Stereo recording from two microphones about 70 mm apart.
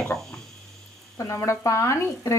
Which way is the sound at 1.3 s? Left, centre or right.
Left.